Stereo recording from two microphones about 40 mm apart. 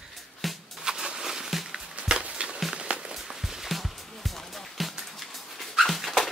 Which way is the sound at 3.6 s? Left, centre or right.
Centre.